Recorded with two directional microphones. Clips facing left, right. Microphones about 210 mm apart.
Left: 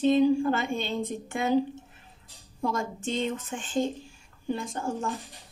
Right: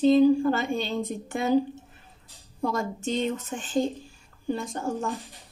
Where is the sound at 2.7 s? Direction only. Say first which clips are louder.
Right 2 dB; 40° right (ahead or behind).